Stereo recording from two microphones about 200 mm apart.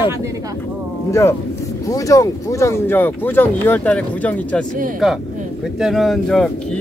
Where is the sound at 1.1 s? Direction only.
15° left (ahead or behind).